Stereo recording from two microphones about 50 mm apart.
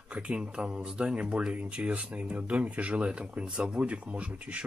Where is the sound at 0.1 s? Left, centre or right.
Right.